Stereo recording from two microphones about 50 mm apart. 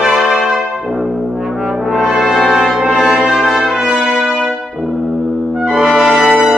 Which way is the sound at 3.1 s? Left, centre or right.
Centre.